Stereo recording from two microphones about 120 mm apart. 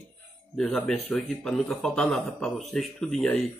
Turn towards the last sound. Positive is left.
turn(degrees=5)  # may be behind; listen again after turning